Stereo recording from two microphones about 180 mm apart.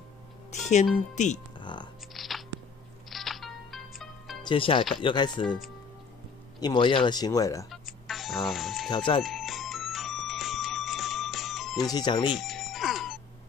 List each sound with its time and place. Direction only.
0.5 s music: 40° left (ahead or behind)
1.1 s speech: 40° left (ahead or behind)
1.6 s music: 25° left (ahead or behind)
2.1 s a sound: centre (ahead or behind)
3.1 s music: centre (ahead or behind)
4.4 s speech: 30° left (ahead or behind)
6.6 s speech: 25° left (ahead or behind)
7.7 s music: centre (ahead or behind)
8.9 s speech: 25° left (ahead or behind)
9.2 s music: centre (ahead or behind)
11.9 s speech: 25° left (ahead or behind)
12.4 s music: centre (ahead or behind)